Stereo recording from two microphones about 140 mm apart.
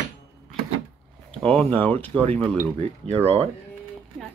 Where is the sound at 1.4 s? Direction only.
5° left (ahead or behind).